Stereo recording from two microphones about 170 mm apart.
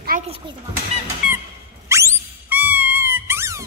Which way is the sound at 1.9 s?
15° right (ahead or behind).